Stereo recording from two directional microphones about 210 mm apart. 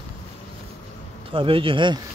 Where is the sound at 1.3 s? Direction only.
25° right (ahead or behind).